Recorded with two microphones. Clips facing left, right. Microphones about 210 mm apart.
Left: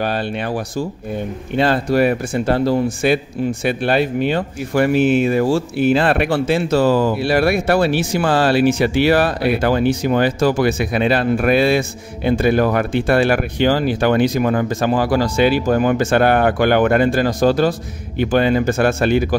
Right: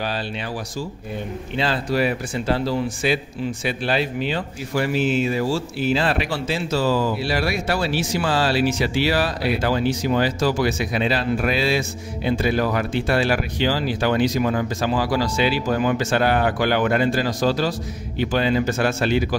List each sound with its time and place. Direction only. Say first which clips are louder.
0.0 s speech: left 6 dB; 55° left (ahead or behind)